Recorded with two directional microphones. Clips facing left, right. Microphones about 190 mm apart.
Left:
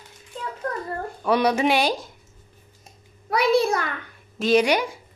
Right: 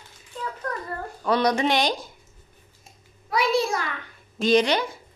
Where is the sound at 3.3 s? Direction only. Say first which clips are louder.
Left 3 dB; 60° left (ahead or behind).